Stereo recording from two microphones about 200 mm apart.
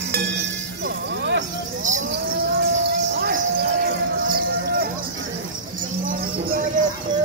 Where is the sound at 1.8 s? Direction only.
40° right (ahead or behind).